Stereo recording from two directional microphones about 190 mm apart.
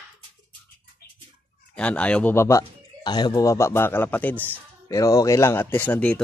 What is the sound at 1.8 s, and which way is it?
Speech, 5° left (ahead or behind).